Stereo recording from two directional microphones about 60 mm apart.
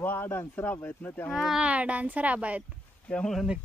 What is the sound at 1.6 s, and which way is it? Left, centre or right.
A woman's voice, right.